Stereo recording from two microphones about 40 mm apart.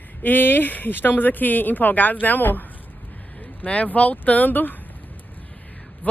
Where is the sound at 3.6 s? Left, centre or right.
Left.